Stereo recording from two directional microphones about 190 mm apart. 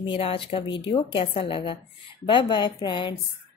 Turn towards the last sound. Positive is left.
turn(degrees=25)  # may be behind; listen again after turning